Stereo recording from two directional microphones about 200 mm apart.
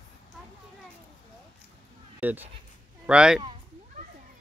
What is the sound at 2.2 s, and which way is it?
Speech, 10° right (ahead or behind).